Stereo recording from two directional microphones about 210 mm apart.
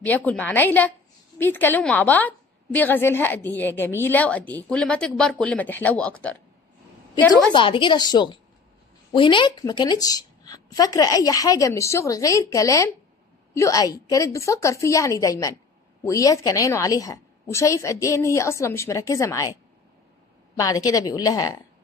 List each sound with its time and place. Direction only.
0.0 s a woman's voice: 10° left (ahead or behind)
7.5 s a woman's voice: 25° left (ahead or behind)